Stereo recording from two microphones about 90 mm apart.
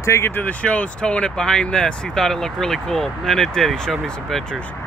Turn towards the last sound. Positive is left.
turn(degrees=5)  # may be behind; listen again after turning